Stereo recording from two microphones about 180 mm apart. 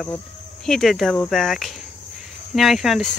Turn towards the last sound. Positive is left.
turn(degrees=0)  # may be behind; listen again after turning